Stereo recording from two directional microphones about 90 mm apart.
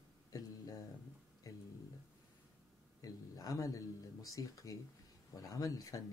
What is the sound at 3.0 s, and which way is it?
Speech, 40° left (ahead or behind).